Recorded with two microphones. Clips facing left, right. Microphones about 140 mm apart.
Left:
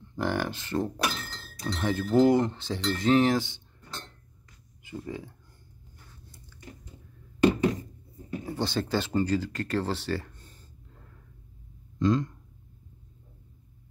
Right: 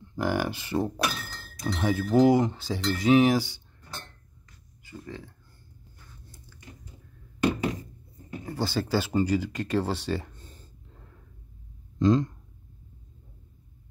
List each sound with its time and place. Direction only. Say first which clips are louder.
0.1 s speech: right 2 dB; 5° right (ahead or behind)
4.8 s speech: left 4 dB; 20° left (ahead or behind)
8.5 s speech: right 1 dB; 5° right (ahead or behind)
12.0 s speech: right 3 dB; 30° right (ahead or behind)